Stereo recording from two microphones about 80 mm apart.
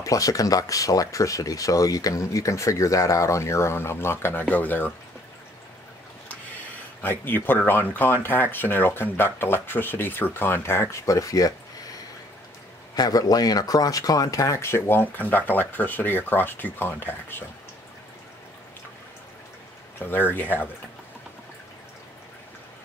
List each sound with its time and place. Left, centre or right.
0.0 s speech: left
7.0 s speech: left
12.9 s speech: left
20.0 s speech: left